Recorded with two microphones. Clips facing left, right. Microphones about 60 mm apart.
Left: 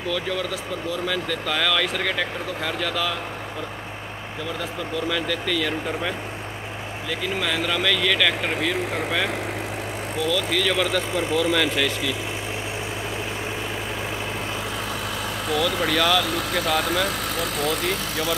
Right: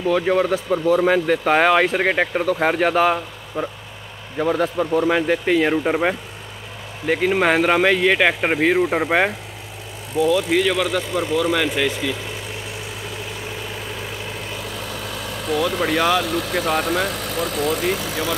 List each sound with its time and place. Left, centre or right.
0.1 s speech: right
2.3 s speech: right
4.4 s speech: right
10.7 s speech: centre
15.9 s speech: right
16.8 s speech: centre